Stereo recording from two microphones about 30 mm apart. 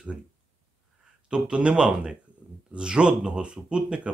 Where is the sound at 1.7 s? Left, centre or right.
Right.